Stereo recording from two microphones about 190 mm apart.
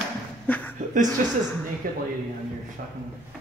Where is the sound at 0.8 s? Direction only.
40° right (ahead or behind).